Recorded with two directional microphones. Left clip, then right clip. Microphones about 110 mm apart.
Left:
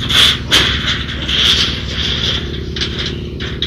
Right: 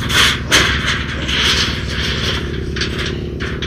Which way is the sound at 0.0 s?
45° right (ahead or behind).